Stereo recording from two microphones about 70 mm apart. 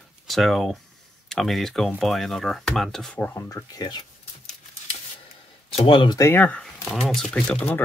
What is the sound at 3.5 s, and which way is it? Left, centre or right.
Speech, left.